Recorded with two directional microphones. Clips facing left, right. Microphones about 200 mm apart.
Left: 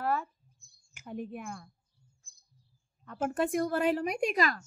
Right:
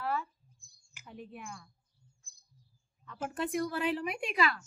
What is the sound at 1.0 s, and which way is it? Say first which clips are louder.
Speech: left 7 dB; 50° left (ahead or behind).